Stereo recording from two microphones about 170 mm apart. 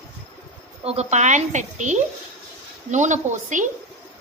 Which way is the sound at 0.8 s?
40° right (ahead or behind).